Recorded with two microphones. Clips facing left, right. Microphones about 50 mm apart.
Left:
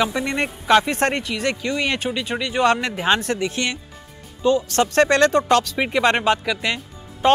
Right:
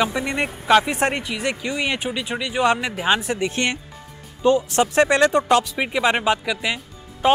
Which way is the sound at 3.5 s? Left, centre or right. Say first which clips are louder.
Right 2 dB; right.